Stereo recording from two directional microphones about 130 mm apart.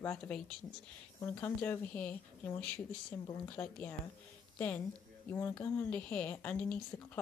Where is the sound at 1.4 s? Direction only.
15° left (ahead or behind).